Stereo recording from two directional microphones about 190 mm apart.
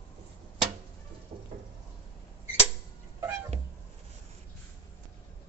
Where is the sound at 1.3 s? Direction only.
30° right (ahead or behind).